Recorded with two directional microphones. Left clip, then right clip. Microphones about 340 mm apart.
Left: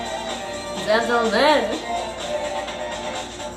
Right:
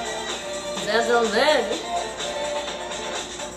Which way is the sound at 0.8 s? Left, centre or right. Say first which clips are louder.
Left 1 dB; centre.